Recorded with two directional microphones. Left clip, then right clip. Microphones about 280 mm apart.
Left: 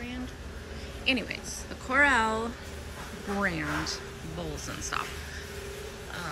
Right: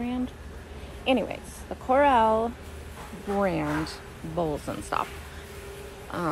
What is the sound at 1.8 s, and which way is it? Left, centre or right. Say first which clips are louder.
Speech: right 4 dB; centre.